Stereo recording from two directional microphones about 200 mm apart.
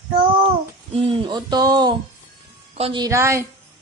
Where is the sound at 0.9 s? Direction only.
25° right (ahead or behind).